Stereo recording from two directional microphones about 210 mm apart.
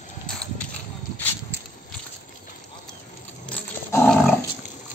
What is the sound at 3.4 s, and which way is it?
Dog, 10° left (ahead or behind).